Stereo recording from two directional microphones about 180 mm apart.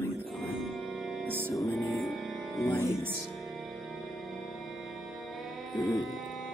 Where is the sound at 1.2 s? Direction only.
10° right (ahead or behind).